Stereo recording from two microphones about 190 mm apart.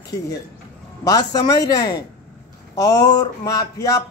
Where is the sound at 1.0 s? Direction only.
20° left (ahead or behind).